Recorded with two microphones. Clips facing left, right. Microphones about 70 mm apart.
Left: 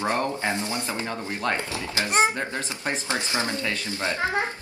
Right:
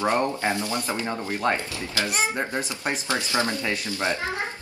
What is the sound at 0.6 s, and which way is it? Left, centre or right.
A woman's voice, left.